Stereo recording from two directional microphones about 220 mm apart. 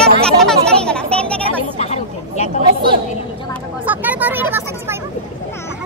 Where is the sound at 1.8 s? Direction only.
30° left (ahead or behind).